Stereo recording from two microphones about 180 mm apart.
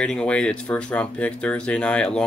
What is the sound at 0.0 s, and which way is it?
Speech, 5° left (ahead or behind).